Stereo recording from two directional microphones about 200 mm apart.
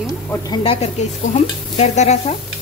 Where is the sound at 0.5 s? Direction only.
25° left (ahead or behind).